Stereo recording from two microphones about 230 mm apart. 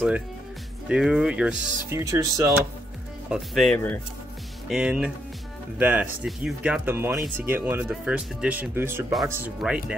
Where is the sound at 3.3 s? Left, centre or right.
Centre.